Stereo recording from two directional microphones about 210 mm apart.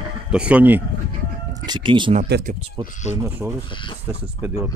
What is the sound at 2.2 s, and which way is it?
Speech, 50° right (ahead or behind).